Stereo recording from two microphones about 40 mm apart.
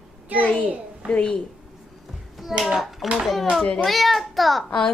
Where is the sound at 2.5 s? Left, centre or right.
Centre.